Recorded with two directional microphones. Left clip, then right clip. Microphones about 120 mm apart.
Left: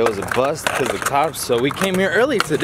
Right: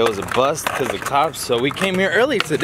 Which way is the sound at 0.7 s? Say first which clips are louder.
Left 2 dB; 25° left (ahead or behind).